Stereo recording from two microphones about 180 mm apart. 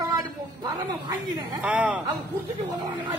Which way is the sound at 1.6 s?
10° right (ahead or behind).